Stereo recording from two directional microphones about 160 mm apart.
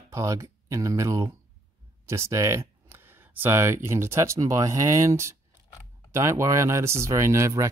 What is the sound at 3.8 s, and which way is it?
Speech, 15° right (ahead or behind).